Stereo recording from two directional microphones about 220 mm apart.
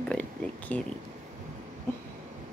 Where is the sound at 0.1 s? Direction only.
5° left (ahead or behind).